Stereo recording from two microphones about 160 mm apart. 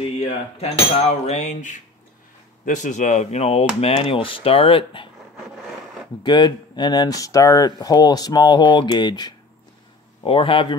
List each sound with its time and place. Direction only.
0.6 s cutlery: 40° left (ahead or behind)
2.6 s speech: 50° left (ahead or behind); by 5.1 s 35° left (ahead or behind)
6.2 s speech: 25° left (ahead or behind)